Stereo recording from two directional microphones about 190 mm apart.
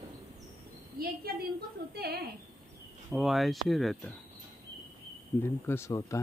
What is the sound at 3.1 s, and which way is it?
Speech, centre (ahead or behind).